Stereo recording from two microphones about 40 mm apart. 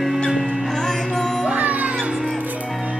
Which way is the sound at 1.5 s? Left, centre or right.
Right.